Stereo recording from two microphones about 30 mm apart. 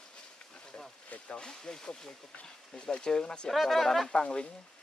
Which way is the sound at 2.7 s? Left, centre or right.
Left.